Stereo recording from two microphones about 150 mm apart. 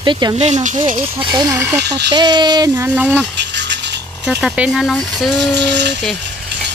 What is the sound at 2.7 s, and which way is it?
Speech, 15° right (ahead or behind).